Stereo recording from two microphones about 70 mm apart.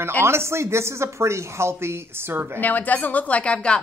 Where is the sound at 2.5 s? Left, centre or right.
Left.